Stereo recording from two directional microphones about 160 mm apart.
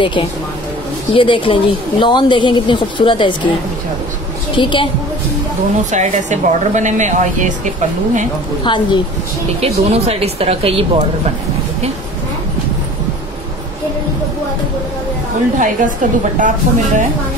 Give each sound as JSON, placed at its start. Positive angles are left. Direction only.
{"t": 0.0, "sound": "a woman's voice", "side_deg": 30}
{"t": 4.6, "sound": "a woman's voice", "side_deg": 30}
{"t": 5.9, "sound": "speech", "side_deg": -50}
{"t": 8.6, "sound": "a woman's voice", "side_deg": 30}
{"t": 9.6, "sound": "a woman's voice", "side_deg": -40}
{"t": 15.6, "sound": "speech", "side_deg": -55}